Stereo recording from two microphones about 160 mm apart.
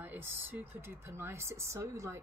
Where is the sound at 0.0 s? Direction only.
15° right (ahead or behind).